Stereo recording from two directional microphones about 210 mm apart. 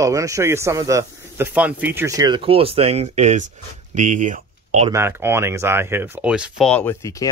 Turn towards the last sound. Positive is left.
turn(degrees=15)  # may be behind; listen again after turning